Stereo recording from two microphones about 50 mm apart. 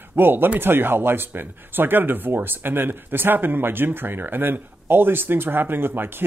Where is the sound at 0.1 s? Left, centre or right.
Right.